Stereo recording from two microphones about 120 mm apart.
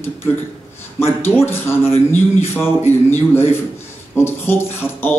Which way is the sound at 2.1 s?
20° left (ahead or behind).